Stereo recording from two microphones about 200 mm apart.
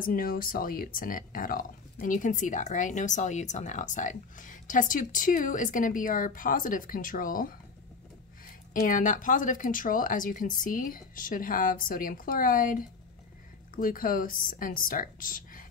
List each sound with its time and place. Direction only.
0.0 s speech: 45° left (ahead or behind)
8.7 s a woman's voice: 40° left (ahead or behind)
13.7 s a woman's voice: 45° left (ahead or behind)